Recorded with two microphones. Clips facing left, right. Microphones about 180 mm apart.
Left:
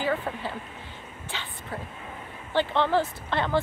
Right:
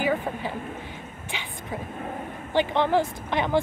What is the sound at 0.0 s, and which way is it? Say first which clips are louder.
Speech: right 2 dB; 15° right (ahead or behind).